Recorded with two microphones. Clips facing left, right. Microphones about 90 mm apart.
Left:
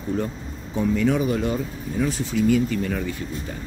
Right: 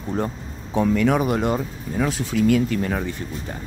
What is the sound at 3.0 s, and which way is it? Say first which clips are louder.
Speech: even; 35° right (ahead or behind).